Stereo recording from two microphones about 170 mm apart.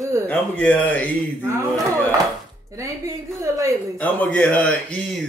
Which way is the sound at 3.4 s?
20° right (ahead or behind).